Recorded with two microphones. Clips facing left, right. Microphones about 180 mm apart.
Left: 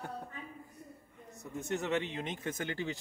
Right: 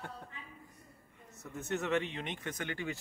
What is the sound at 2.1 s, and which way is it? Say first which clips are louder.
Speech: left 2 dB; 30° left (ahead or behind).